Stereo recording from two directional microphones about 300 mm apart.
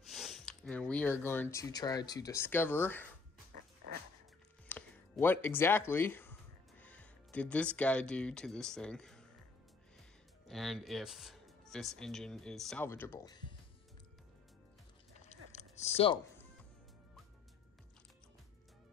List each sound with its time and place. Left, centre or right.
0.0 s speech: centre
4.6 s speech: centre
10.4 s speech: centre
15.1 s chewing: left